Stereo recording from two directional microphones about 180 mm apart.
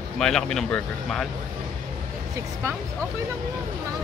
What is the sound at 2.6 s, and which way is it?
Speech, 15° right (ahead or behind).